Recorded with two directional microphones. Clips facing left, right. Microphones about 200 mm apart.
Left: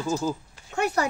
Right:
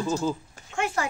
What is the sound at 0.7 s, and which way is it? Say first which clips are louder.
Speech: left 3 dB; 40° left (ahead or behind).